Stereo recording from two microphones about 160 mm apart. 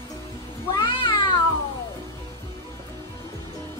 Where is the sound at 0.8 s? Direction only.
30° left (ahead or behind).